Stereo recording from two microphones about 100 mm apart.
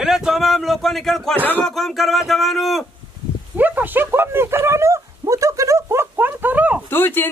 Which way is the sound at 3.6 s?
20° right (ahead or behind).